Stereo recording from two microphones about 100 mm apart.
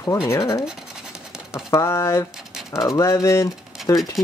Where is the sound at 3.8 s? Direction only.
Centre (ahead or behind).